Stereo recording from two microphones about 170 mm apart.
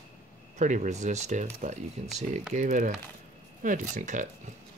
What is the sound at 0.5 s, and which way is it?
Speech, 45° right (ahead or behind).